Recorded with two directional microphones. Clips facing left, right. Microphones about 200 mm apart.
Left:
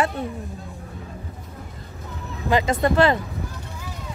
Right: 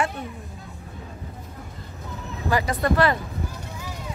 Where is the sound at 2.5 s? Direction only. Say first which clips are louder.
Left 3 dB; 25° left (ahead or behind).